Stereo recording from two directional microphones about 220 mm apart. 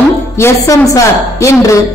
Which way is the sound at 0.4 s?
15° left (ahead or behind).